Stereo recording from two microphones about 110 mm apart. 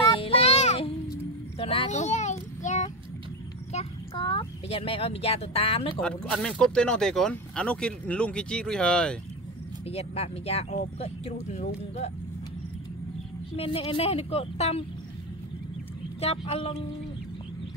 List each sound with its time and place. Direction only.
0.1 s child singing: 55° left (ahead or behind); by 0.9 s 75° left (ahead or behind)
1.6 s child singing: 60° left (ahead or behind); by 3.9 s 90° left
4.1 s speech: 50° left (ahead or behind)
5.9 s speech: 5° left (ahead or behind)
9.8 s speech: 65° left (ahead or behind); by 12.1 s 85° left
13.6 s a woman's voice: 55° left (ahead or behind)
16.2 s a woman's voice: 70° left (ahead or behind)